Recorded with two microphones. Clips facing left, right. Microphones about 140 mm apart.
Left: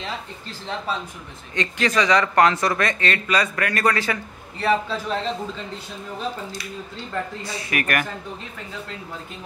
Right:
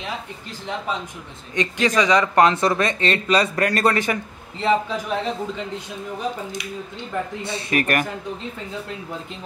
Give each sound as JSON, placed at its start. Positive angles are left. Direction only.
{"t": 0.7, "sound": "speech", "side_deg": -15}